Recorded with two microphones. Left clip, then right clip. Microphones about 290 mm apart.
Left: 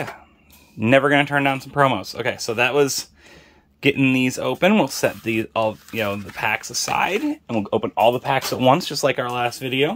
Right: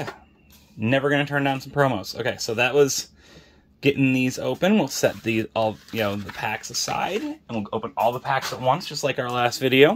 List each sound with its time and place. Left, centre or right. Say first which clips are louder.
0.7 s speech: left 6 dB; centre
7.4 s speech: left 6 dB; left
8.5 s speech: left 6 dB; left
9.0 s speech: left 2 dB; centre